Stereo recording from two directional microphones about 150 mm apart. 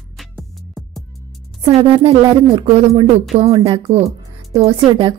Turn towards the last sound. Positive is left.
turn(degrees=-35)  # may be behind; listen again after turning